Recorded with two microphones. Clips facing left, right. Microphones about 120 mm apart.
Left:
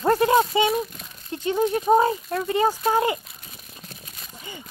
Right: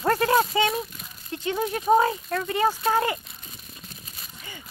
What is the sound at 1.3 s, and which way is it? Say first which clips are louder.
Speech: left 5 dB; 25° left (ahead or behind).